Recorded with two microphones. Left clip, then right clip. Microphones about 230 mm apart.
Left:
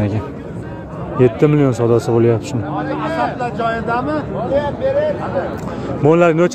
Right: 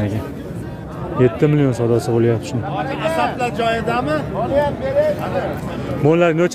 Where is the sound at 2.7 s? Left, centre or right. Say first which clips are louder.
Right 1 dB; right.